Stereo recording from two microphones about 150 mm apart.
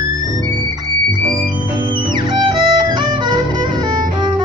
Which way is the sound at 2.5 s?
30° right (ahead or behind).